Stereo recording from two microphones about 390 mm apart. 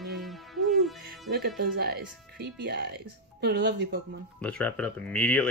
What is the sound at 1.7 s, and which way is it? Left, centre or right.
Speech, right.